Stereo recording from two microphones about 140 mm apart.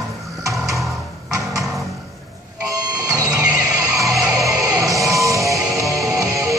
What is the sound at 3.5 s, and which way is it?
Music, 20° right (ahead or behind).